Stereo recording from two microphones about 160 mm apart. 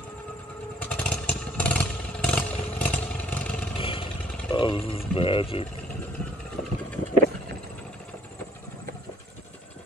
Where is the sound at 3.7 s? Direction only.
35° left (ahead or behind).